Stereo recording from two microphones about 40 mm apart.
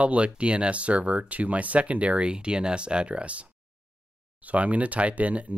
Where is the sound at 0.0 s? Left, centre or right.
Right.